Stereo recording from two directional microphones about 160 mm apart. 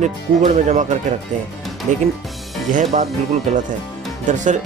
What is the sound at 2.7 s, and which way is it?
Speech, 50° right (ahead or behind).